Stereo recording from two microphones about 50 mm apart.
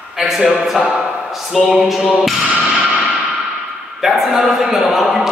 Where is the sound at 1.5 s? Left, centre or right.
Centre.